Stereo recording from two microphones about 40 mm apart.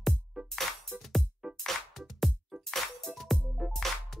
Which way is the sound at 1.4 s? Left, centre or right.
Centre.